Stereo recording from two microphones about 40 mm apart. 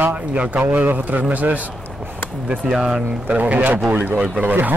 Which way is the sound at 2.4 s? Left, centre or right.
Right.